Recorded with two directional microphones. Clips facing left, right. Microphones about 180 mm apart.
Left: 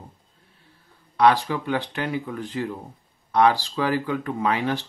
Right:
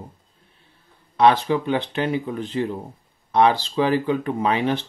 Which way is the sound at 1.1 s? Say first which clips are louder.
Right 2 dB; 20° right (ahead or behind).